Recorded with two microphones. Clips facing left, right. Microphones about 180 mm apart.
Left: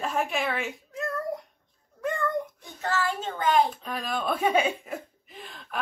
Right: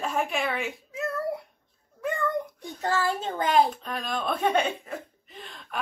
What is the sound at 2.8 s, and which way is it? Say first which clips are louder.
Speech: right 2 dB; 35° right (ahead or behind).